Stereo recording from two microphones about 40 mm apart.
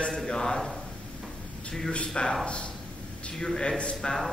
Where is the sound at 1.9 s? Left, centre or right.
Left.